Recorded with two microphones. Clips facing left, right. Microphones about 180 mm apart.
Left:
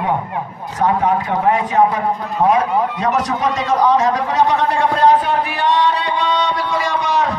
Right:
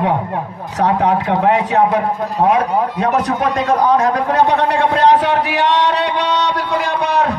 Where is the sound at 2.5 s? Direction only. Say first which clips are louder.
Right 1 dB; 60° right (ahead or behind).